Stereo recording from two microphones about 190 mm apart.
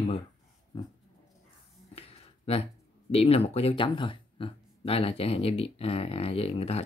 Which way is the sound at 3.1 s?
30° left (ahead or behind).